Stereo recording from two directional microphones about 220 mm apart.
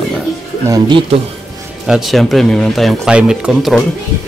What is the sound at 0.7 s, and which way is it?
Speech, 15° right (ahead or behind).